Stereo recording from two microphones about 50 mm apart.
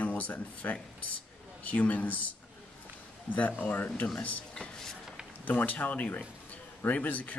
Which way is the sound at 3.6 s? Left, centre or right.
Left.